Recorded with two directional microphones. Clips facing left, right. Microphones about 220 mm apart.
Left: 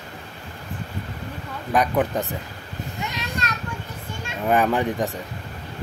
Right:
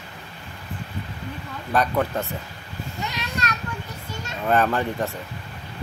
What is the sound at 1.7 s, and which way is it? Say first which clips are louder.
Speech: left 1 dB; 15° left (ahead or behind).